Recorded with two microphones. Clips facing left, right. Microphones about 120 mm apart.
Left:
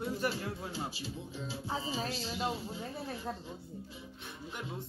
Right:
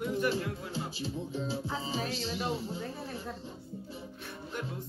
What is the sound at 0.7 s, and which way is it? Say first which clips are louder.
Music: right 4 dB; 30° right (ahead or behind).